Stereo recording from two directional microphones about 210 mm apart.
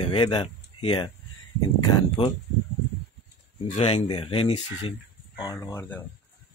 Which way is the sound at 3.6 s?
30° left (ahead or behind).